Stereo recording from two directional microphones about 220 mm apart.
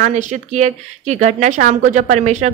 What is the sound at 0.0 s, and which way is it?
Speech, 35° right (ahead or behind).